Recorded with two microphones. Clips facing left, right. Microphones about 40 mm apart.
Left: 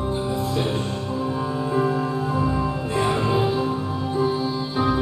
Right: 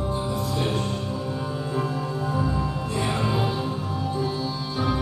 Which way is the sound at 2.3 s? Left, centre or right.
Left.